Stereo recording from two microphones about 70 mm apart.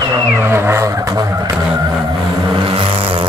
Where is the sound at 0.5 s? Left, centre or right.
Right.